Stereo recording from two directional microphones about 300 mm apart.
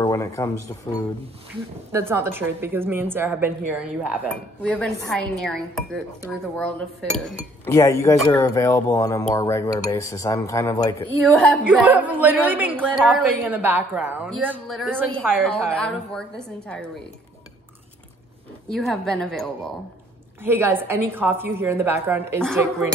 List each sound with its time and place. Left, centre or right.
0.0 s a sound: centre
1.9 s a woman's voice: centre
11.5 s a woman's voice: centre
18.7 s a woman's voice: centre